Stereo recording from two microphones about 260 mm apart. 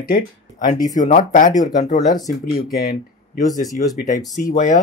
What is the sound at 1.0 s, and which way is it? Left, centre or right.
Speech, left.